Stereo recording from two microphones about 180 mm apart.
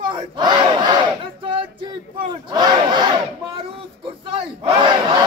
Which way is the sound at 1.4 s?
30° right (ahead or behind).